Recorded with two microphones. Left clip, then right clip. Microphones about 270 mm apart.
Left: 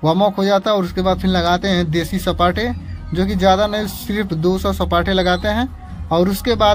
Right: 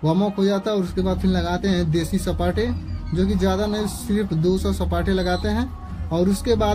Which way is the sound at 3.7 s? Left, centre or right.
Centre.